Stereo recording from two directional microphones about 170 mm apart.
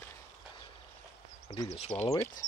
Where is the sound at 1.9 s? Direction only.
15° left (ahead or behind).